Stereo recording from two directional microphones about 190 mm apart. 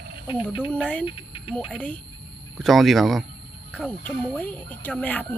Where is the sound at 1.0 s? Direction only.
25° left (ahead or behind).